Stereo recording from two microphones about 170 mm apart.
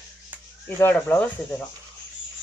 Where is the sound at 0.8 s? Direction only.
10° left (ahead or behind).